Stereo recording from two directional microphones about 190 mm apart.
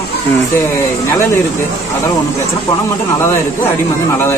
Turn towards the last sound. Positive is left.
turn(degrees=15)  # may be behind; listen again after turning